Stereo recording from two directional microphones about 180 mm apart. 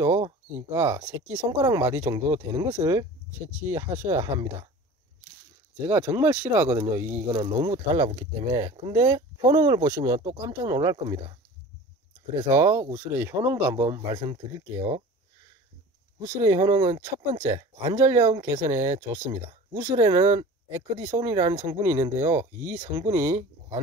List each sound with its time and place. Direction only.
0.0 s speech: 15° right (ahead or behind)
5.8 s speech: 15° right (ahead or behind)
12.4 s speech: 15° right (ahead or behind)
16.2 s speech: 20° right (ahead or behind)